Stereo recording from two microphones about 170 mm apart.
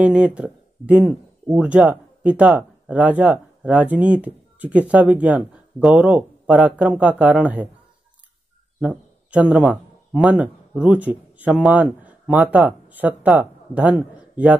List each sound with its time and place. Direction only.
0.0 s speech: 5° right (ahead or behind)
8.8 s a man's voice: 5° right (ahead or behind)
14.1 s a sound: 10° right (ahead or behind)